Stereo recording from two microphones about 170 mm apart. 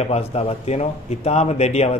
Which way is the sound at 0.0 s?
40° left (ahead or behind).